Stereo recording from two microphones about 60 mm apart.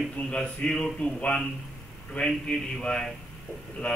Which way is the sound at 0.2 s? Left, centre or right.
Centre.